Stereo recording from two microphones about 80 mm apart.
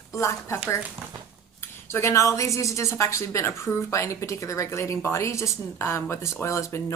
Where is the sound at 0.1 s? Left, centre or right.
Left.